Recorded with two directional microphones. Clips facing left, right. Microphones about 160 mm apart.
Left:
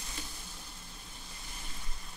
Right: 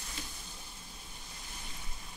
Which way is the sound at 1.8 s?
5° right (ahead or behind).